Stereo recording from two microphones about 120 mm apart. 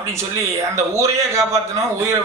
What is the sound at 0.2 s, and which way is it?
A man's voice, 25° right (ahead or behind).